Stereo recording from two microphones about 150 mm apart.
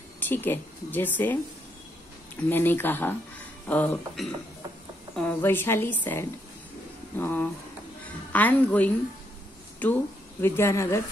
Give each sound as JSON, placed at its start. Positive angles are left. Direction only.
{"t": 0.2, "sound": "a woman's voice", "side_deg": 10}
{"t": 2.5, "sound": "a woman's voice", "side_deg": 15}